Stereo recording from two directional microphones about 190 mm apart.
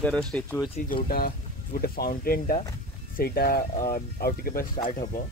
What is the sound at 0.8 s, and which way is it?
Speech, 50° left (ahead or behind).